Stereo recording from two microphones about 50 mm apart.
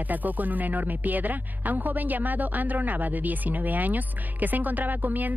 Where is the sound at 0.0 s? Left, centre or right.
Right.